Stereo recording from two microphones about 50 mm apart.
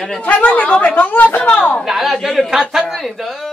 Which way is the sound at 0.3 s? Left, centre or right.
Left.